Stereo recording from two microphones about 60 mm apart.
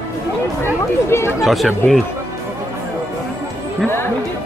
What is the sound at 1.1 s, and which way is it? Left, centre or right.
Speech, left.